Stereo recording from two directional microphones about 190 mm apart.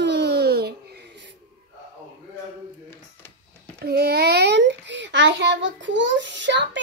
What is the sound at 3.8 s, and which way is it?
A child's voice, 55° right (ahead or behind).